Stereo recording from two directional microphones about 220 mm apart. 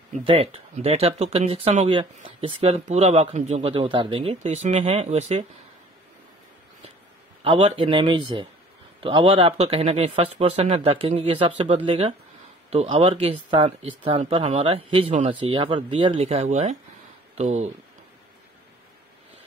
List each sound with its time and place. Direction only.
0.2 s speech: 25° right (ahead or behind)
7.4 s speech: 25° right (ahead or behind)